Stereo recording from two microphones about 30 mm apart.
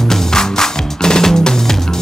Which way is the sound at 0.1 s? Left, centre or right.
Centre.